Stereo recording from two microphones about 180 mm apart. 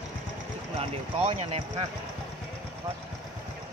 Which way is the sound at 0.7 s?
35° right (ahead or behind).